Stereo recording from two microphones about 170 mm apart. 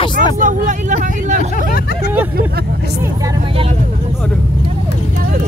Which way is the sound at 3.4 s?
35° right (ahead or behind).